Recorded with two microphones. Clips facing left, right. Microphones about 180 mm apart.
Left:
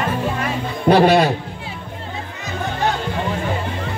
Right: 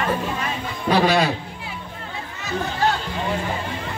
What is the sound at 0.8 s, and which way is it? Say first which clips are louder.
Speech: left 5 dB; 55° left (ahead or behind).